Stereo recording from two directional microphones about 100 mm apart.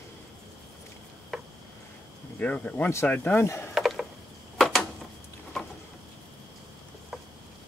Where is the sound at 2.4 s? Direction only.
15° left (ahead or behind).